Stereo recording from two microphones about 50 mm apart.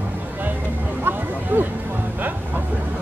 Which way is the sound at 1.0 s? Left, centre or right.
Right.